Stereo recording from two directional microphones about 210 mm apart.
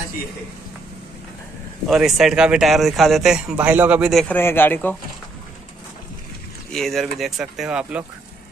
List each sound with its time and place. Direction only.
1.9 s speech: centre (ahead or behind)
6.7 s speech: centre (ahead or behind)